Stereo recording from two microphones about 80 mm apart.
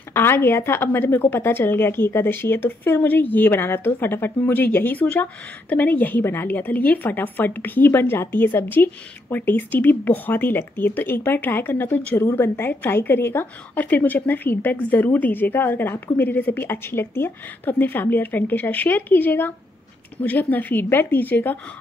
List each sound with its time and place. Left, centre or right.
0.1 s a woman's voice: left